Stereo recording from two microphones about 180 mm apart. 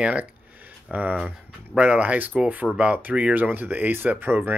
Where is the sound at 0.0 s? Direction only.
5° right (ahead or behind).